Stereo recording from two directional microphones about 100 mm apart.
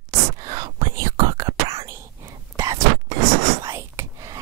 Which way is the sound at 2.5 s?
35° right (ahead or behind).